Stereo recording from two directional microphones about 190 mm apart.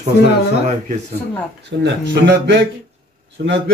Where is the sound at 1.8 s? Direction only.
65° right (ahead or behind).